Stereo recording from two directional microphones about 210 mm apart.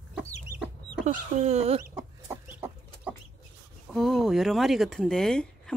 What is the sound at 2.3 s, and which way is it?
Chicken, 10° right (ahead or behind).